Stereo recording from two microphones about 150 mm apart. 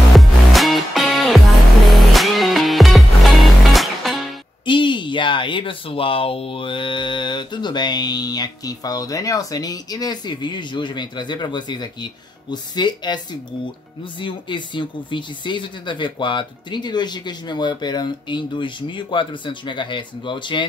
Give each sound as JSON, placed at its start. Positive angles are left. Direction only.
{"t": 0.1, "sound": "music", "side_deg": 0}
{"t": 4.6, "sound": "speech", "side_deg": 30}